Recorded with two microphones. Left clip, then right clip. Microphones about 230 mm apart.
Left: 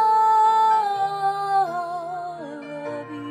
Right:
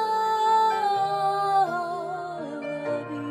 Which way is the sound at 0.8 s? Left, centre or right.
Centre.